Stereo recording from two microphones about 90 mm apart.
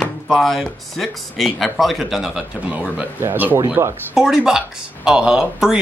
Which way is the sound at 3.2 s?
25° right (ahead or behind).